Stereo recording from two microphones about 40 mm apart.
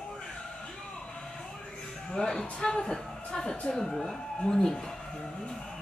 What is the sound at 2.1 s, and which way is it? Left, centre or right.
Speech, centre.